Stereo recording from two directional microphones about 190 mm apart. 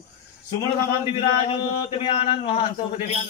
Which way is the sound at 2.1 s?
30° left (ahead or behind).